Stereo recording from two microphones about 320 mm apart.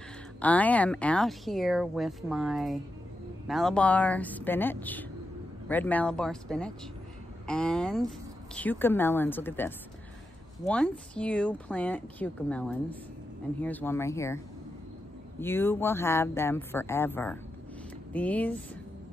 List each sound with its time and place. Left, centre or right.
0.4 s speech: centre
15.4 s speech: centre